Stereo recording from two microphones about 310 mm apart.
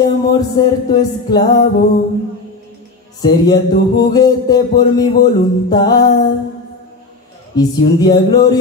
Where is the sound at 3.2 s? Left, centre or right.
Centre.